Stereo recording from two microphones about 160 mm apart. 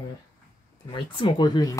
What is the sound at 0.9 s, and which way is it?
Speech, 30° left (ahead or behind).